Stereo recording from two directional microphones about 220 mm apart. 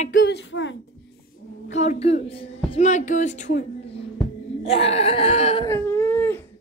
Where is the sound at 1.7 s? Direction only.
30° left (ahead or behind).